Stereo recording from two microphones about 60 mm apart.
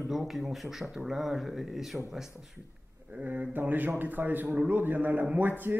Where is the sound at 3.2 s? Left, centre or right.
Right.